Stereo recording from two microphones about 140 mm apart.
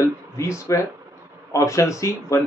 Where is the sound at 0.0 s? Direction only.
20° left (ahead or behind).